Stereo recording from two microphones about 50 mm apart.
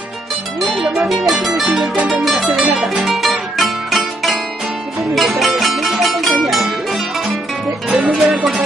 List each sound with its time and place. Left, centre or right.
0.8 s music: centre
1.7 s music: right
2.0 s music: centre